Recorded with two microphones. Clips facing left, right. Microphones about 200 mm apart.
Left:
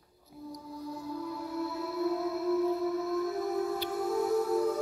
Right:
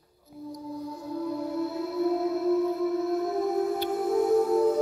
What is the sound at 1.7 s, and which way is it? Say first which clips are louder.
Music: right 4 dB; 20° right (ahead or behind).